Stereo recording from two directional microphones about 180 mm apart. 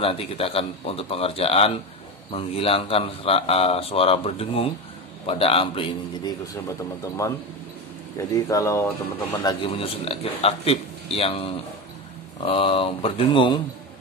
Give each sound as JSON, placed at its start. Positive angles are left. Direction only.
{"t": 0.0, "sound": "speech", "side_deg": 30}
{"t": 8.5, "sound": "speech", "side_deg": 15}
{"t": 9.7, "sound": "speech", "side_deg": 35}